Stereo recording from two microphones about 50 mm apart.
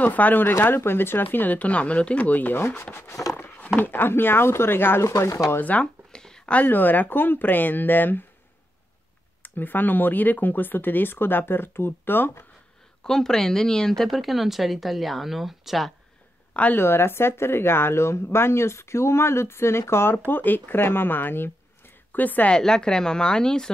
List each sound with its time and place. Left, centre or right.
0.0 s speech: left
1.6 s speech: left
3.3 s speech: left
5.0 s speech: left
5.8 s a sound: centre
6.5 s speech: left
9.4 s speech: left
13.0 s speech: centre
16.7 s speech: left
20.2 s a woman's voice: left
22.6 s speech: centre